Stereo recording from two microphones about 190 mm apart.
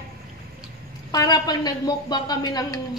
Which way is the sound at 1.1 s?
20° left (ahead or behind).